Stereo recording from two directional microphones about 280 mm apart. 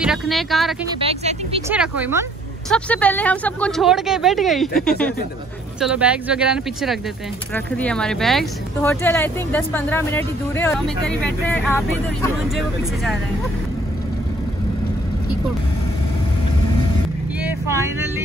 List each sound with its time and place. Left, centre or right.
0.0 s speech: centre
0.8 s speech: centre
1.7 s speech: centre
2.7 s speech: centre
17.4 s speech: centre